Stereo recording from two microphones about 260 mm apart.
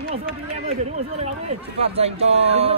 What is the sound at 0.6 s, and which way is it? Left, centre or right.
Speech, right.